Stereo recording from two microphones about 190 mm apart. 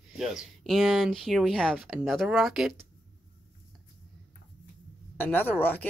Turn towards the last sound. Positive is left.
turn(degrees=10)  # may be behind; listen again after turning